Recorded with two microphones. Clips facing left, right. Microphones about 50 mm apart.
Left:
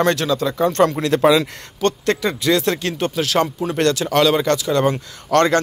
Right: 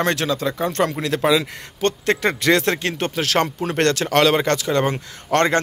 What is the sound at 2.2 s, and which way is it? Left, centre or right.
Speech, right.